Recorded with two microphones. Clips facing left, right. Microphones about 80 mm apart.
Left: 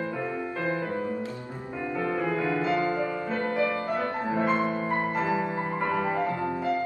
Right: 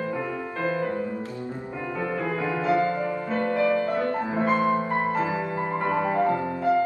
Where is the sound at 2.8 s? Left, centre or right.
Centre.